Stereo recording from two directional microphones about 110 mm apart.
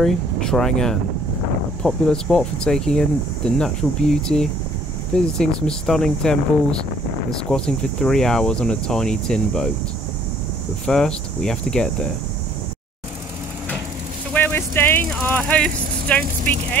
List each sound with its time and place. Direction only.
0.0 s speech: 5° left (ahead or behind)
10.9 s speech: 5° left (ahead or behind)
14.3 s vehicle: 20° left (ahead or behind)
16.5 s speech: 15° left (ahead or behind)